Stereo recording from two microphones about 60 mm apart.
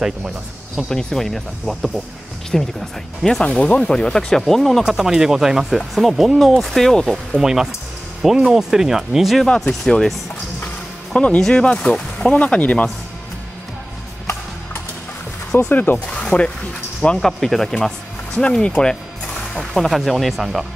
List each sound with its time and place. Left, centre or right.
0.8 s speech: centre
3.4 s speech: centre
4.8 s speech: centre
7.3 s speech: centre
9.6 s speech: centre
11.1 s speech: centre
15.7 s speech: left
16.1 s a sound: centre
17.2 s speech: centre